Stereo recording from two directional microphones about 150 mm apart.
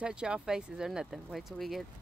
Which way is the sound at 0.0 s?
5° right (ahead or behind).